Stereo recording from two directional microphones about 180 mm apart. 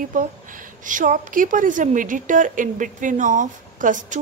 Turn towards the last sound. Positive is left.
turn(degrees=-45)  # may be behind; listen again after turning